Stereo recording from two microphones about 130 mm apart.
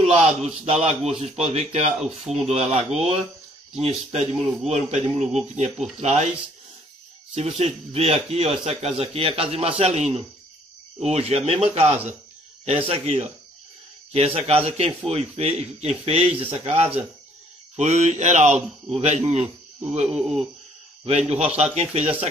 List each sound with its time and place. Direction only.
0.0 s a sound: 55° right (ahead or behind)
0.7 s a man's voice: 55° right (ahead or behind)
2.0 s speech: 5° right (ahead or behind)
2.4 s a man's voice: 55° right (ahead or behind)
4.6 s a man's voice: 60° right (ahead or behind)
7.3 s a man's voice: 55° right (ahead or behind)
20.1 s speech: 5° right (ahead or behind)
21.0 s a man's voice: 55° right (ahead or behind)